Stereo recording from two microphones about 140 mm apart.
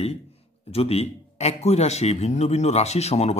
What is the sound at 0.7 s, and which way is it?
A man's voice, 45° left (ahead or behind).